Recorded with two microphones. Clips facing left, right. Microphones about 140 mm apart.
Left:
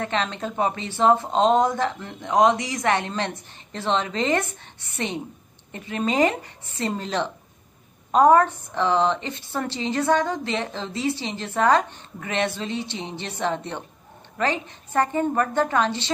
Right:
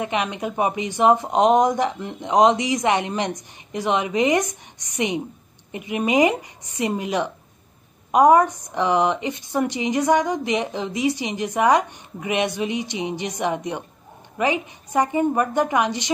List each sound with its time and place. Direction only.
0.0 s a woman's voice: 15° right (ahead or behind)